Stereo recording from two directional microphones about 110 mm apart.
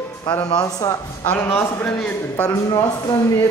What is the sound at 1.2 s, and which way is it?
A man's voice, 15° left (ahead or behind).